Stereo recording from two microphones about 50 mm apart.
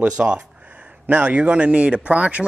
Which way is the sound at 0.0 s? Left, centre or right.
Centre.